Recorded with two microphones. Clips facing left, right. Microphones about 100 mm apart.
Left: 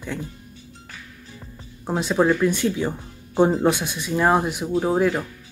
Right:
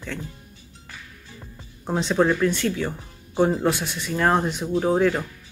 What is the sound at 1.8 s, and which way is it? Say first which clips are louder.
Speech: left 1 dB; 10° left (ahead or behind).